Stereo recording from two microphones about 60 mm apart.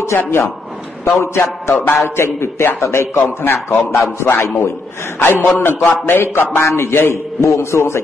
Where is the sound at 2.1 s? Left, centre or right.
Left.